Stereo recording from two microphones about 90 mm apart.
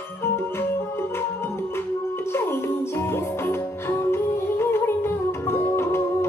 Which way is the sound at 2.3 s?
25° left (ahead or behind).